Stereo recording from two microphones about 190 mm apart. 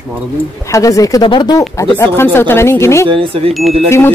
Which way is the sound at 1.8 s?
15° left (ahead or behind).